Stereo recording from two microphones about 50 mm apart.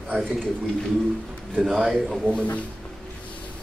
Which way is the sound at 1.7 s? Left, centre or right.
Centre.